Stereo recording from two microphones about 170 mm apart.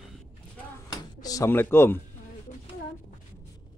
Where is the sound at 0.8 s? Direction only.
20° left (ahead or behind).